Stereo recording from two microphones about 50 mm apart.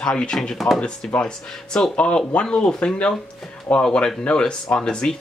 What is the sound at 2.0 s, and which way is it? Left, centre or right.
Speech, left.